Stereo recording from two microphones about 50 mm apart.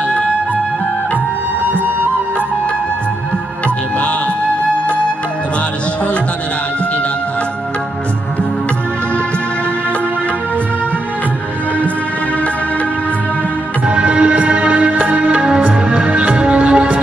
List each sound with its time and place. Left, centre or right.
13.8 s music: right
15.4 s music: centre